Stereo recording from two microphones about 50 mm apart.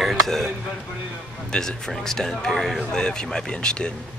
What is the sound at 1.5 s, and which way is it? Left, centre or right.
Speech, centre.